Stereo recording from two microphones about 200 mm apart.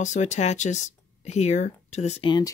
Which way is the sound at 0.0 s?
35° left (ahead or behind).